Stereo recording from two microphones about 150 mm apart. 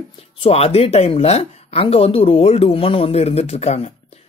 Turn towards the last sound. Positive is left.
turn(degrees=45)  # may be behind; listen again after turning